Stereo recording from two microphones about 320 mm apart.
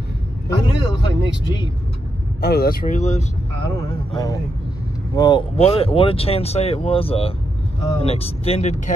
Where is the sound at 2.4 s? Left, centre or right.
Left.